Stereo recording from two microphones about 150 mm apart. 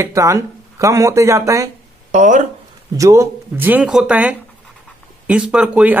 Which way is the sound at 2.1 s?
55° right (ahead or behind).